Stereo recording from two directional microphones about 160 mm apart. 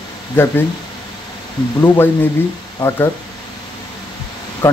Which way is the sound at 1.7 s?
15° left (ahead or behind).